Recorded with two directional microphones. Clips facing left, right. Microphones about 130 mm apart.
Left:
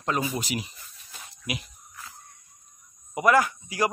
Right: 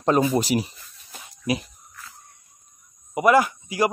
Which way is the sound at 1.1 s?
35° right (ahead or behind).